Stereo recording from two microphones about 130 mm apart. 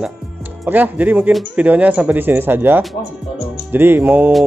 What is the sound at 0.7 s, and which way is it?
A man's voice, 15° right (ahead or behind).